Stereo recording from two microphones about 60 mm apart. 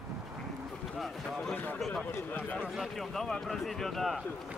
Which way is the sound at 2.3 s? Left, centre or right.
Left.